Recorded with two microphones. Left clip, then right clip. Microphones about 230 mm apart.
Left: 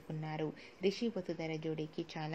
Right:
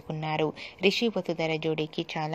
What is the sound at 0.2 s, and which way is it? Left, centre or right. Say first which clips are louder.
A woman's voice: right 13 dB; right.